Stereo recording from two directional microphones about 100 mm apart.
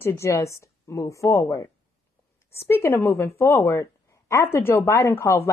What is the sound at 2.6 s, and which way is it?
A woman's voice, 25° left (ahead or behind).